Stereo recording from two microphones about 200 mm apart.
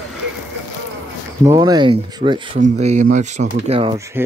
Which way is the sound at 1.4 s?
15° right (ahead or behind).